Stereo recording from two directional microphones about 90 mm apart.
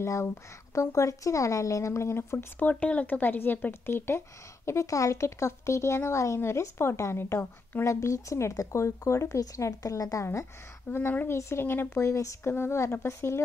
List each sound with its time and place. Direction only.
0.0 s speech: 30° left (ahead or behind)
2.7 s speech: 15° left (ahead or behind); by 10.4 s 35° left (ahead or behind)
10.9 s speech: 25° left (ahead or behind)